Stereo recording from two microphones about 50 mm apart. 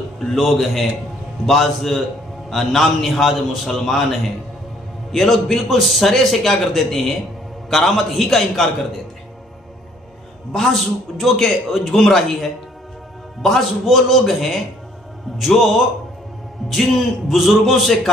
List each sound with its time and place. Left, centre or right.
0.3 s a man's voice: centre
10.5 s a man's voice: centre